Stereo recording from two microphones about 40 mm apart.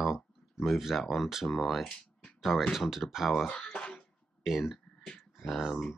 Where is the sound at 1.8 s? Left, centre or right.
Left.